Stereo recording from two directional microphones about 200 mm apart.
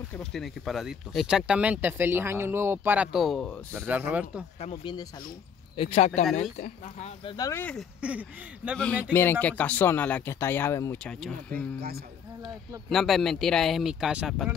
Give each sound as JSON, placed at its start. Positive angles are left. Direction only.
{"t": 0.1, "sound": "speech", "side_deg": 0}
{"t": 3.8, "sound": "speech", "side_deg": -10}
{"t": 4.6, "sound": "speech", "side_deg": 30}
{"t": 7.3, "sound": "speech", "side_deg": 15}
{"t": 8.0, "sound": "speech", "side_deg": -5}
{"t": 9.1, "sound": "speech", "side_deg": 10}
{"t": 12.9, "sound": "speech", "side_deg": 0}